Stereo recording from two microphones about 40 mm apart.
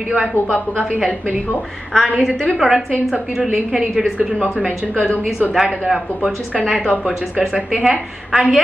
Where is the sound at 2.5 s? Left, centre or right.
Centre.